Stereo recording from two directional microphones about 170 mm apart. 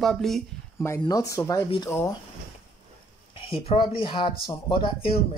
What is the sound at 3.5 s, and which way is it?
Speech, 30° left (ahead or behind).